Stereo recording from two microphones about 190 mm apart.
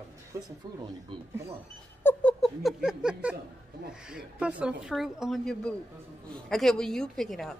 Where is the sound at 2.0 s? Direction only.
5° left (ahead or behind).